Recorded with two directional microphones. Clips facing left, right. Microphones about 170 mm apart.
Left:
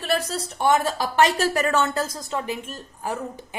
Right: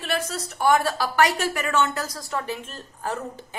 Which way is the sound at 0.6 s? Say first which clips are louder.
Even; 20° left (ahead or behind).